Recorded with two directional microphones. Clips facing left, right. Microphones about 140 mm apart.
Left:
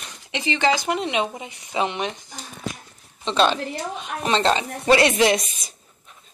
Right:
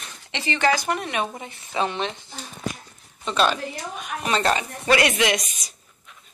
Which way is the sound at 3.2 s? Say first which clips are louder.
Left 2 dB; 25° left (ahead or behind).